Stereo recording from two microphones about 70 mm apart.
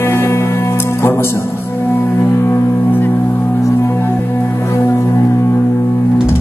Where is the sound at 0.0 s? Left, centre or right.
Left.